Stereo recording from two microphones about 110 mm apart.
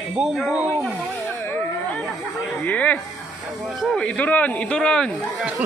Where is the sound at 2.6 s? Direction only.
15° left (ahead or behind).